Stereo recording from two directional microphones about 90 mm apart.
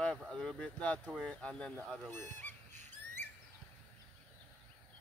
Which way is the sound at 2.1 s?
20° left (ahead or behind).